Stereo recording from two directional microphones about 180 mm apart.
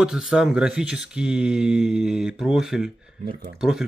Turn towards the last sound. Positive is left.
turn(degrees=-5)  # may be behind; listen again after turning